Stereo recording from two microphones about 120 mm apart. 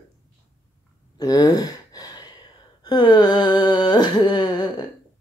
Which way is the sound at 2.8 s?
35° left (ahead or behind).